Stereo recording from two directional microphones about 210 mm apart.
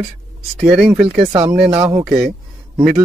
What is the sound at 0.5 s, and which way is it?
Speech, 5° right (ahead or behind).